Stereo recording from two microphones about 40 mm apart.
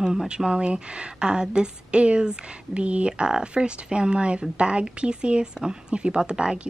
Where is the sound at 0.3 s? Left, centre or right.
Right.